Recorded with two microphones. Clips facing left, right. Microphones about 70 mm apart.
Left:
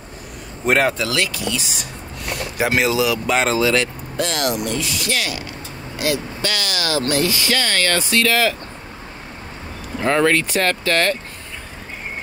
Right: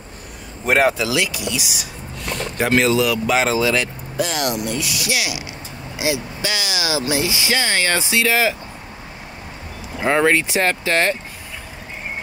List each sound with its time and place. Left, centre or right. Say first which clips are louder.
0.7 s speech: right 1 dB; centre
2.5 s speech: right 2 dB; centre
10.0 s speech: even; centre